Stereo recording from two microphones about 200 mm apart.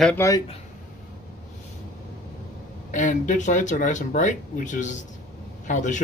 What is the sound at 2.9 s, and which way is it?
Speech, 40° left (ahead or behind).